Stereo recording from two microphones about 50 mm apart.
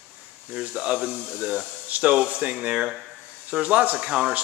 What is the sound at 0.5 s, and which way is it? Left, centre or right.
Speech, right.